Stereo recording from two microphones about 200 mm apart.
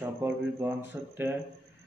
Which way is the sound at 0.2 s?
10° right (ahead or behind).